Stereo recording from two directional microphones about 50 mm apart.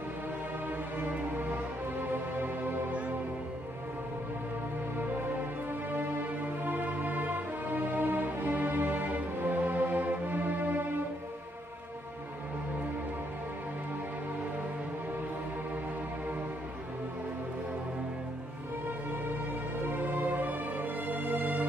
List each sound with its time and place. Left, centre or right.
1.4 s music: right
4.9 s music: right
20.0 s music: right